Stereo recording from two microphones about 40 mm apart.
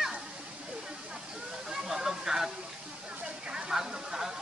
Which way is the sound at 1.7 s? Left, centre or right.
Centre.